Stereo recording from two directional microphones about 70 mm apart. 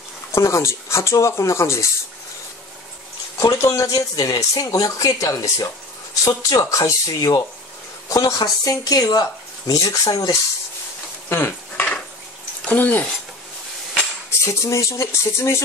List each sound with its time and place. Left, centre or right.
0.3 s speech: left
3.3 s speech: left
8.4 s speech: left
11.2 s stir: left
12.6 s speech: left
14.4 s speech: left